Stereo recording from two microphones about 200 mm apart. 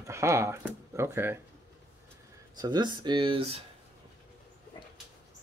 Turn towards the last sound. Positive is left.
turn(degrees=-30)  # may be behind; listen again after turning